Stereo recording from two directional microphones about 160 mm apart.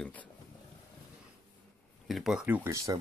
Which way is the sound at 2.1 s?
Centre (ahead or behind).